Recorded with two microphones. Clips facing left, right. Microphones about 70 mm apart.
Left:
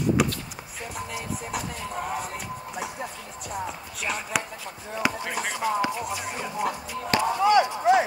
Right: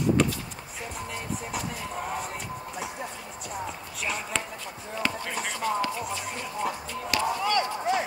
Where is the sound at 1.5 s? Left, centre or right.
Centre.